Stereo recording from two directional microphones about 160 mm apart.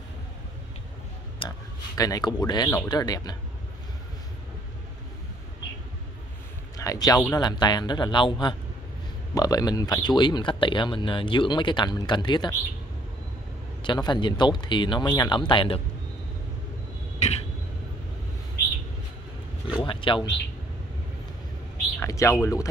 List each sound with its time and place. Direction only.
1.4 s a sound: 30° left (ahead or behind)
2.0 s speech: 25° left (ahead or behind)
6.8 s speech: 20° left (ahead or behind)
13.8 s speech: 30° left (ahead or behind)
17.2 s a sound: 40° left (ahead or behind)
19.8 s speech: 30° left (ahead or behind)
22.0 s speech: 20° left (ahead or behind)